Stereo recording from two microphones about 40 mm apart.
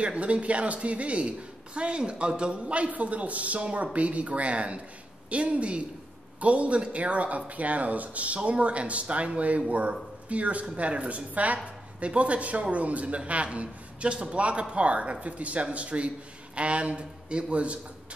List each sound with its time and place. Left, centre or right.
0.0 s speech: right